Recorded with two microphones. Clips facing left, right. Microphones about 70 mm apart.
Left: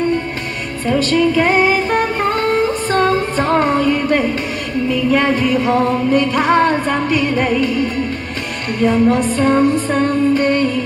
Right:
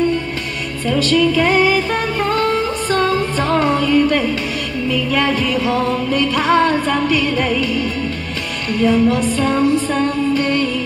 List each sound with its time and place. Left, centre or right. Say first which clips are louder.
0.8 s music: left 1 dB; left